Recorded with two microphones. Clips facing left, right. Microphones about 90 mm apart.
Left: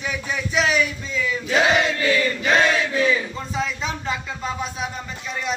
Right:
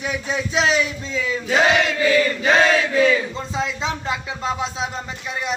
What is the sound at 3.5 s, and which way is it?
Speech, 20° right (ahead or behind).